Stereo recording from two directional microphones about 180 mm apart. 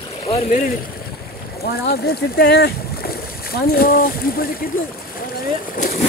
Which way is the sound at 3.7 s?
55° left (ahead or behind).